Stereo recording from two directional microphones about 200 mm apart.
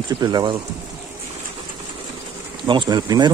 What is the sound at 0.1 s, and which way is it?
Speech, 20° right (ahead or behind).